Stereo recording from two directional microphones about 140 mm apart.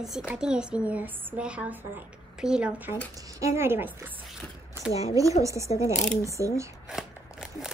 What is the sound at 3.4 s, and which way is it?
Speech, 20° right (ahead or behind).